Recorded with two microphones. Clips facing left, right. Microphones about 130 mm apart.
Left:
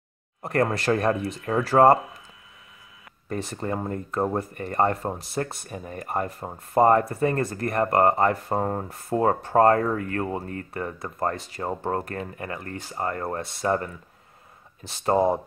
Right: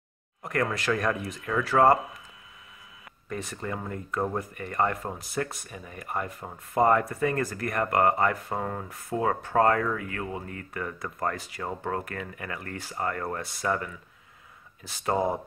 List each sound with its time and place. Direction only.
0.4 s speech: 35° left (ahead or behind)
3.3 s speech: 35° left (ahead or behind)
14.8 s speech: 25° left (ahead or behind)